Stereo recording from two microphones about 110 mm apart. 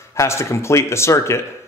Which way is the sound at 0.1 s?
25° left (ahead or behind).